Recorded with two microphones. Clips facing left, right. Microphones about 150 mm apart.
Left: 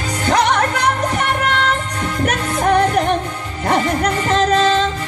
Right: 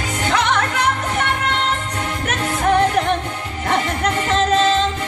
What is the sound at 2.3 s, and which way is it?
Music, 35° left (ahead or behind).